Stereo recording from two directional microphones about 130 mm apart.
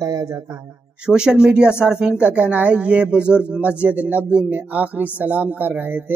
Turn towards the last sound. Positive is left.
turn(degrees=-15)  # may be behind; listen again after turning